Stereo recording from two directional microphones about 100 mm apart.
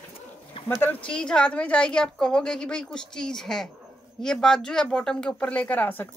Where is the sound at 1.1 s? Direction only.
10° left (ahead or behind).